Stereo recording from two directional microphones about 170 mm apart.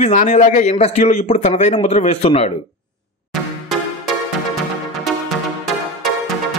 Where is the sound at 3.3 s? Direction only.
Centre (ahead or behind).